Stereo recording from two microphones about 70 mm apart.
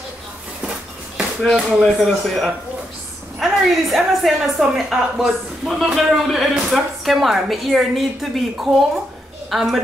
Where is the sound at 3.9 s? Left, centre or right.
Centre.